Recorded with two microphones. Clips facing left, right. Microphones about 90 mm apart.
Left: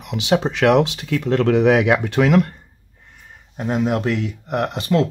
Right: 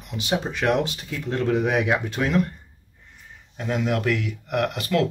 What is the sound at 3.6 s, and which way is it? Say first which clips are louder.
Speech: left 4 dB; 35° left (ahead or behind).